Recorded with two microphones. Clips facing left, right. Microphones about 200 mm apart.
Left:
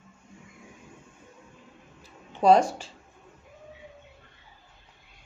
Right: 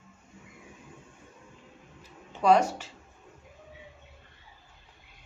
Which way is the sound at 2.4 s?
30° left (ahead or behind).